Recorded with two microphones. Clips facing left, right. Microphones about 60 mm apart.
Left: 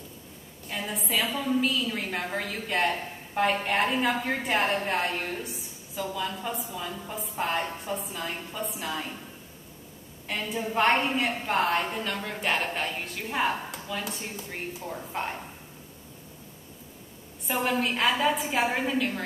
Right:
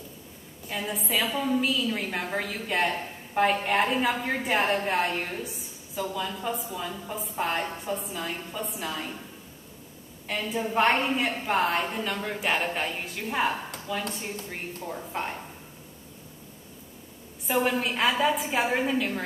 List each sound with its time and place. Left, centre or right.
0.7 s a woman's voice: centre
10.2 s a woman's voice: centre
17.5 s a woman's voice: centre